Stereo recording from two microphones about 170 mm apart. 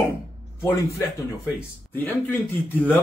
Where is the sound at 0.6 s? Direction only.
15° left (ahead or behind).